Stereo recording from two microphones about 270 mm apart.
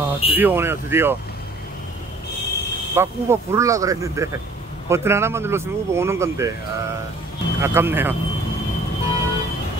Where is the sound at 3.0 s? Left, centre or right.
Centre.